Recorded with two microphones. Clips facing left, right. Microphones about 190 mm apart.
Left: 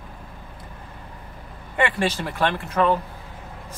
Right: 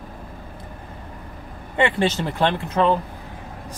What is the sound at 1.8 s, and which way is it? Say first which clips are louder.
Speech: right 3 dB; 25° right (ahead or behind).